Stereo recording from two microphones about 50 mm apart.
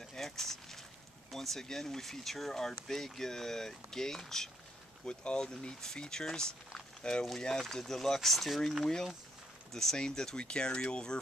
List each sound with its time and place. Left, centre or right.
0.1 s a sound: centre
1.3 s speech: centre
7.2 s speech: centre